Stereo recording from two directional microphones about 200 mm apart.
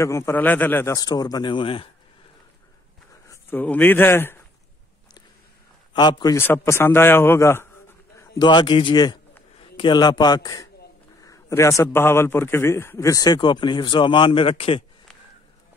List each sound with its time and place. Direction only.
0.0 s a man's voice: 15° left (ahead or behind)
3.3 s speech: 10° left (ahead or behind)
5.9 s a man's voice: 20° left (ahead or behind)
8.2 s a man's voice: 20° left (ahead or behind)